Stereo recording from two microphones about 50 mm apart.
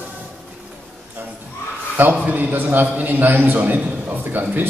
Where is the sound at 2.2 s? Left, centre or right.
Right.